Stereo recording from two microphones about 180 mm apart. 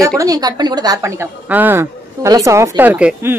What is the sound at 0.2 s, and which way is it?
A woman's voice, 20° right (ahead or behind).